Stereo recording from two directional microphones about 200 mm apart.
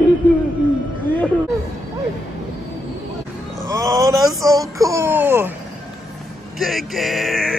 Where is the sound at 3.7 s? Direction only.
15° right (ahead or behind).